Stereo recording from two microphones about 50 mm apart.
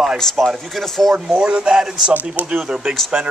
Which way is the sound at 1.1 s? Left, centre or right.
Centre.